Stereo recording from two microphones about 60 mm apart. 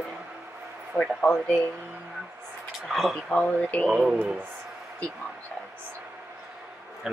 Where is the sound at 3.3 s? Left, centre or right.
Centre.